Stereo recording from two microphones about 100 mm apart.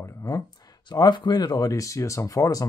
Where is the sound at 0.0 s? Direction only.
35° left (ahead or behind).